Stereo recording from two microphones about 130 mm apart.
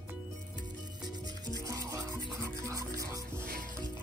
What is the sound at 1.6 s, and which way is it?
Music, 25° right (ahead or behind).